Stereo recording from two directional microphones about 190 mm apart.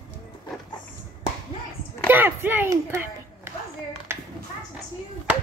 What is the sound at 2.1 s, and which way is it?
Speech, 10° right (ahead or behind).